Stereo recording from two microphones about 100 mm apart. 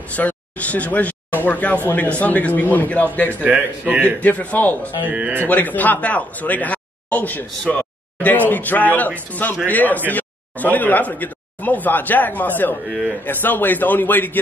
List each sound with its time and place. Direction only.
0.1 s speech: 15° left (ahead or behind)
3.4 s a man's voice: 15° right (ahead or behind)
4.0 s speech: 15° left (ahead or behind)
5.1 s a man's voice: 15° right (ahead or behind)
5.4 s a man's voice: 15° left (ahead or behind)